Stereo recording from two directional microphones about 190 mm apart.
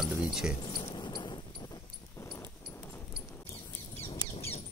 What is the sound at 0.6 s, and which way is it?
Mouse, 20° left (ahead or behind).